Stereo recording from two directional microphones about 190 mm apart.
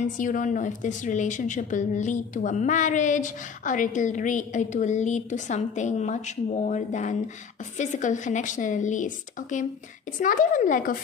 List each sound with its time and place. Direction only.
0.2 s a woman's voice: 45° left (ahead or behind)